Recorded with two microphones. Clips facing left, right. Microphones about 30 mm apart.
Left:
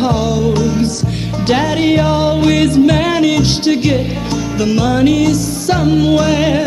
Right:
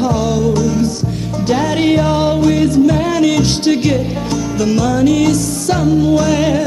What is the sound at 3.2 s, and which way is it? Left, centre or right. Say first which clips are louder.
Music: even; centre.